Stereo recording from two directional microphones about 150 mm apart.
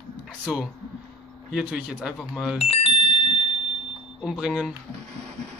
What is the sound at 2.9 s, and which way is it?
Music, 50° right (ahead or behind).